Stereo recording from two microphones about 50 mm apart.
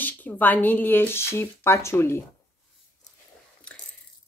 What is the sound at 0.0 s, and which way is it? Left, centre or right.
Speech, left.